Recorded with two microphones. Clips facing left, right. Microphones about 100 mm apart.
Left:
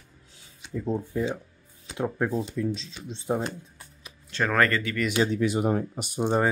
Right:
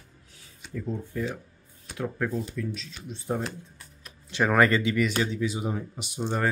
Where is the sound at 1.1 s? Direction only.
20° left (ahead or behind).